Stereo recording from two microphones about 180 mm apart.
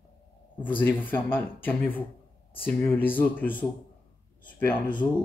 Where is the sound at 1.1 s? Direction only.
10° left (ahead or behind).